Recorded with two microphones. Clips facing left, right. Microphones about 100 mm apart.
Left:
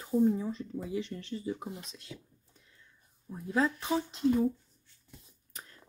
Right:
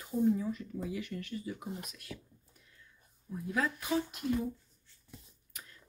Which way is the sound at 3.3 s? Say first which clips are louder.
Left 4 dB; 30° left (ahead or behind).